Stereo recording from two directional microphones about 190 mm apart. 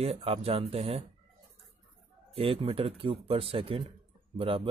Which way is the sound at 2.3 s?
30° right (ahead or behind).